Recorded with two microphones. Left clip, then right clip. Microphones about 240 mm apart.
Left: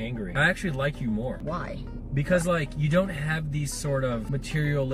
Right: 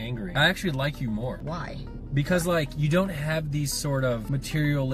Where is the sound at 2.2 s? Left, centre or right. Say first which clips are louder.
Left 1 dB; centre.